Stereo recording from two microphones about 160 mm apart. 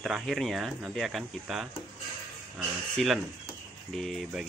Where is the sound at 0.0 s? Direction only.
Centre (ahead or behind).